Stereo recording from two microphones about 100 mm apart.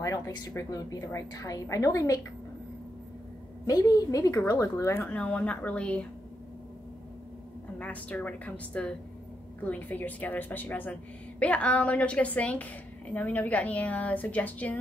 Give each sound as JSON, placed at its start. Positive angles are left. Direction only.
{"t": 0.7, "sound": "a woman's voice", "side_deg": 35}
{"t": 3.6, "sound": "a woman's voice", "side_deg": 35}
{"t": 4.9, "sound": "a woman's voice", "side_deg": 10}
{"t": 7.8, "sound": "a woman's voice", "side_deg": 15}